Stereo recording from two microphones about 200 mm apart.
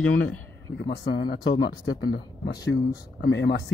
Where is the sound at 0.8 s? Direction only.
50° left (ahead or behind).